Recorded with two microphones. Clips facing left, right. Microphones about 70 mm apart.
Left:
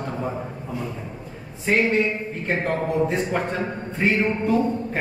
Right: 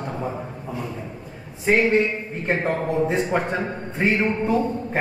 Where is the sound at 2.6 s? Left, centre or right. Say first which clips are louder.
Left 1 dB; right.